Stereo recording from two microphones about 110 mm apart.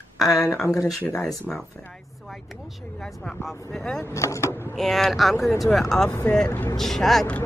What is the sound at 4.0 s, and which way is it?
Speech, 30° left (ahead or behind).